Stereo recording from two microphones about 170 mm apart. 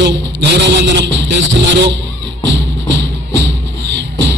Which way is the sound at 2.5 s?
90° right.